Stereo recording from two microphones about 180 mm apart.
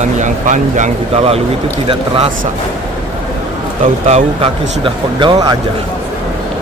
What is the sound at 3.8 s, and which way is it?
Speech, 35° right (ahead or behind).